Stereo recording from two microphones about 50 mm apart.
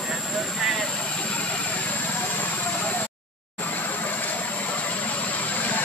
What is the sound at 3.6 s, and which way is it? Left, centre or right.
Vehicle, left.